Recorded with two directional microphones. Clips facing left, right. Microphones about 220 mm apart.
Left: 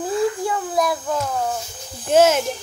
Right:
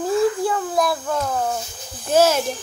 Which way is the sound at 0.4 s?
10° left (ahead or behind).